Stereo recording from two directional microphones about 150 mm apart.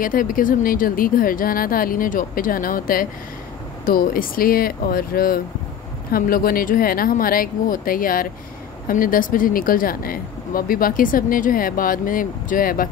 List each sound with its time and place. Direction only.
0.0 s speech: 65° left (ahead or behind)